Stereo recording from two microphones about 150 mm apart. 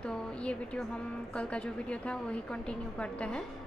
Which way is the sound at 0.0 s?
5° left (ahead or behind).